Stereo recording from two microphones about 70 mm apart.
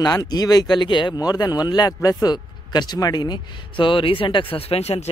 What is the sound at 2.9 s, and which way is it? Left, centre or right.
Speech, left.